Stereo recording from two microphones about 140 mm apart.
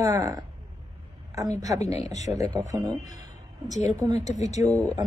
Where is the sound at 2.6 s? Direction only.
25° right (ahead or behind).